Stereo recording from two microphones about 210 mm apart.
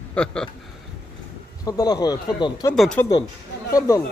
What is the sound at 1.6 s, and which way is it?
Speech, 15° left (ahead or behind).